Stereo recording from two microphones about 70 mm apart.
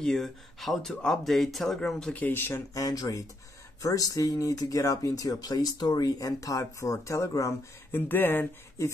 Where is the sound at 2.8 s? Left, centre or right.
Left.